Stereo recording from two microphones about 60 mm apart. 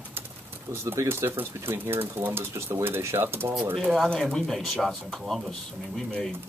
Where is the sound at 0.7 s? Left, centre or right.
Right.